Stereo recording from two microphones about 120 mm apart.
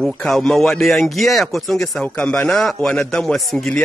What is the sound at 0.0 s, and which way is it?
Speech, 5° left (ahead or behind).